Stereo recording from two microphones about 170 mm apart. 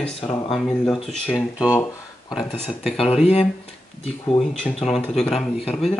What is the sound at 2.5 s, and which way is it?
Speech, 35° left (ahead or behind).